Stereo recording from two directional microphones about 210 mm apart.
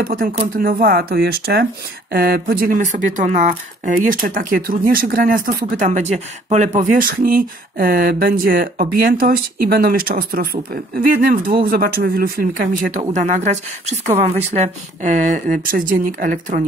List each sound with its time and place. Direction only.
0.0 s speech: 45° right (ahead or behind)